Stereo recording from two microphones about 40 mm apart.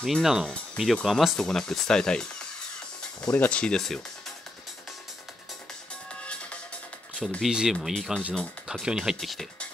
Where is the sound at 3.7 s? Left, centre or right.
Centre.